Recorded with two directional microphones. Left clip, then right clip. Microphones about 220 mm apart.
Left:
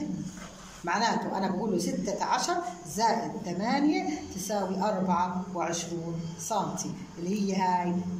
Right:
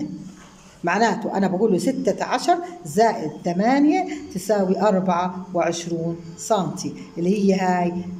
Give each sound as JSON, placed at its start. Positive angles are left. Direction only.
{"t": 0.8, "sound": "speech", "side_deg": -55}